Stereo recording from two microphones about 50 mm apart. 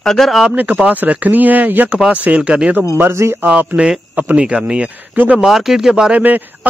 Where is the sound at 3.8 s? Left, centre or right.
Right.